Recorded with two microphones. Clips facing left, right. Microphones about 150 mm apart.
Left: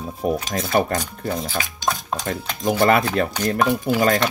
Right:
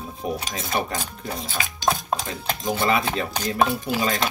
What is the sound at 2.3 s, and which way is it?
Speech, 55° left (ahead or behind).